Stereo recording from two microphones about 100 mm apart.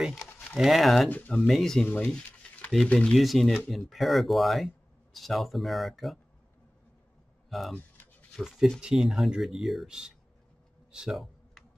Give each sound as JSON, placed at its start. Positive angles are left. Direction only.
{"t": 0.6, "sound": "speech", "side_deg": 0}
{"t": 1.0, "sound": "speech", "side_deg": 15}
{"t": 1.3, "sound": "speech", "side_deg": 5}
{"t": 7.4, "sound": "speech", "side_deg": 0}
{"t": 7.7, "sound": "a sound", "side_deg": 15}
{"t": 8.4, "sound": "speech", "side_deg": 0}
{"t": 10.9, "sound": "a sound", "side_deg": -5}